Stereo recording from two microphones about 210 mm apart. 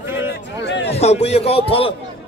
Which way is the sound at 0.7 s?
60° left (ahead or behind).